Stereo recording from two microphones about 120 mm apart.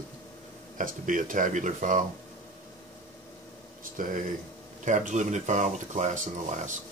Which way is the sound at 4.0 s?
90° right.